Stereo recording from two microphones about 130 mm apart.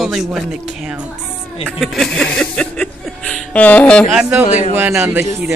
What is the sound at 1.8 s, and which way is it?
Music, 5° left (ahead or behind).